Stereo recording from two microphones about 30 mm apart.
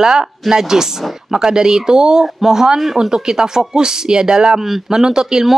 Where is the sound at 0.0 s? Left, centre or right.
Right.